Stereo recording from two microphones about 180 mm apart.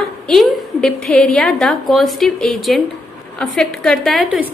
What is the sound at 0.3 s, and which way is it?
A woman's voice, centre (ahead or behind).